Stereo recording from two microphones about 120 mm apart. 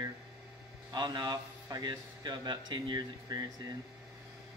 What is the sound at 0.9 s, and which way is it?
A woman's voice, 35° right (ahead or behind).